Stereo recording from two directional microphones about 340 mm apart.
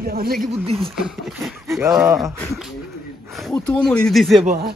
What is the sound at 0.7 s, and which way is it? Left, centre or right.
Speech, centre.